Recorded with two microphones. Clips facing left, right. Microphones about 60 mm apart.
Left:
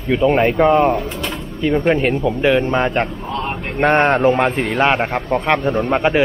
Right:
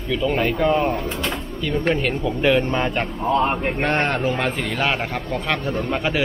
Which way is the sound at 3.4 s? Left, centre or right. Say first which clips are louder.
Right 3 dB; centre.